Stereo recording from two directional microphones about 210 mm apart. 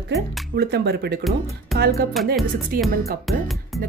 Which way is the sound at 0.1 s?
50° right (ahead or behind).